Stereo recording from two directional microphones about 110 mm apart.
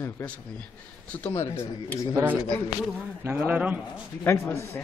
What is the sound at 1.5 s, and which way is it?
Speech, 25° left (ahead or behind).